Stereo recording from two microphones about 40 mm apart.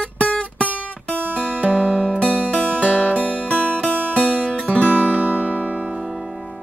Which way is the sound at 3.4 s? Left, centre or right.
Right.